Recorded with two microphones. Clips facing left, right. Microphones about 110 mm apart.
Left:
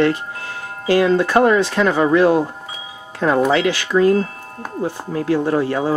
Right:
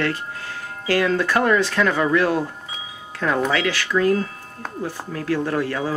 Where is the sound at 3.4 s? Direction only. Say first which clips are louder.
Left 5 dB; 25° left (ahead or behind).